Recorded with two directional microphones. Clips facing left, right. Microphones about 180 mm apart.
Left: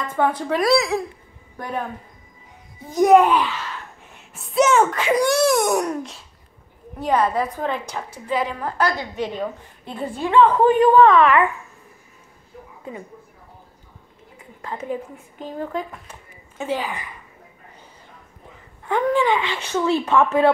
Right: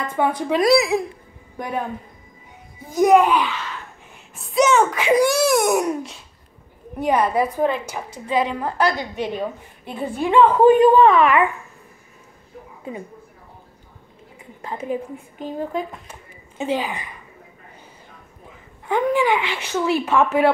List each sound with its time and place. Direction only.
0.0 s speech: 10° right (ahead or behind)
2.9 s a child's voice: centre (ahead or behind)
4.9 s speech: 10° right (ahead or behind)
14.6 s speech: 15° right (ahead or behind)
18.9 s speech: 15° right (ahead or behind)